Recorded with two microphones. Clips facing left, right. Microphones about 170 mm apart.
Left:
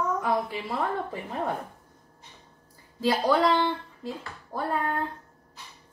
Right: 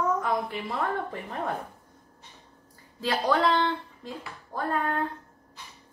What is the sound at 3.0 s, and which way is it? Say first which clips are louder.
A child's voice: left 2 dB; 10° left (ahead or behind).